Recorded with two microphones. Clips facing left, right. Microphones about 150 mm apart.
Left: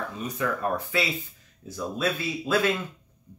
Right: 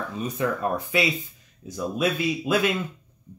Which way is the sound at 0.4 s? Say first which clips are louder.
Right 2 dB; 25° right (ahead or behind).